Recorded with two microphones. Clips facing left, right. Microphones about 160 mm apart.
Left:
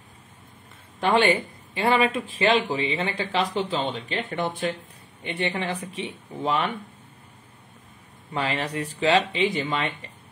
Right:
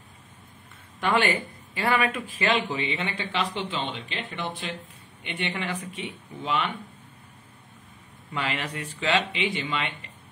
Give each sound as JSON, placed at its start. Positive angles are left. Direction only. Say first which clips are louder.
{"t": 1.0, "sound": "speech", "louder": "left 4 dB", "side_deg": 25}
{"t": 8.3, "sound": "speech", "louder": "left 3 dB", "side_deg": 35}